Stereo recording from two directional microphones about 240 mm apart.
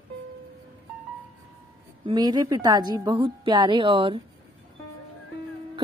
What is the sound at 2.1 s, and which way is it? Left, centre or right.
A woman's voice, centre.